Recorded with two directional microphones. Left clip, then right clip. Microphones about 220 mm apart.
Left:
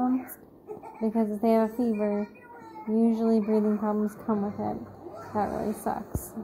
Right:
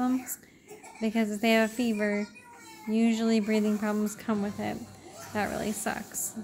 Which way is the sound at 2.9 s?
10° right (ahead or behind).